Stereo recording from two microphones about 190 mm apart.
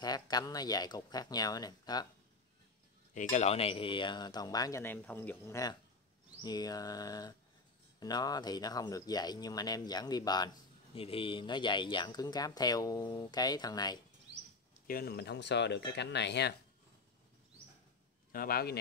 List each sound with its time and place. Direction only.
0.0 s speech: 20° left (ahead or behind)
3.2 s speech: 40° left (ahead or behind); by 13.9 s 20° left (ahead or behind)
14.9 s speech: 55° left (ahead or behind)
18.3 s speech: 50° left (ahead or behind)